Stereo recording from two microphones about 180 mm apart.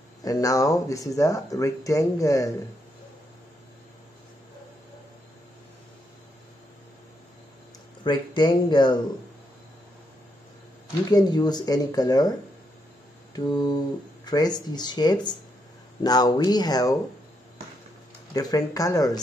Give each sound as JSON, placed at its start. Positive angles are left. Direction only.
{"t": 0.2, "sound": "speech", "side_deg": 20}
{"t": 8.0, "sound": "speech", "side_deg": 25}
{"t": 11.1, "sound": "speech", "side_deg": 20}
{"t": 13.4, "sound": "speech", "side_deg": 25}
{"t": 18.3, "sound": "speech", "side_deg": 20}